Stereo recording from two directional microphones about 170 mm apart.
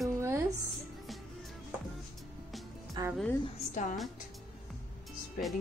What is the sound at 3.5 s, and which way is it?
Speech, 45° left (ahead or behind).